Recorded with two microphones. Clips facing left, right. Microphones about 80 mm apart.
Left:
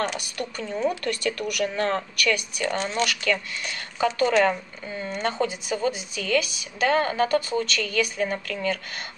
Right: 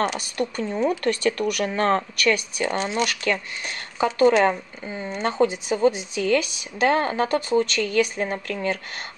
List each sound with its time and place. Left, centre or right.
0.4 s speech: right
2.7 s speech: centre
3.1 s speech: right